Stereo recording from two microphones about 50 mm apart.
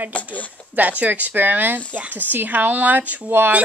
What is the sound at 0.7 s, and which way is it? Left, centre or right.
A child's voice, right.